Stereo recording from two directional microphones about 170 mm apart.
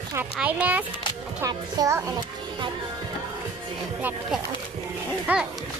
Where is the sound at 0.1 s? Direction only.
10° right (ahead or behind).